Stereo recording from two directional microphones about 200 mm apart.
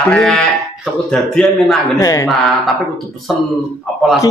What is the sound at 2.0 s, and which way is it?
Speech, 15° left (ahead or behind).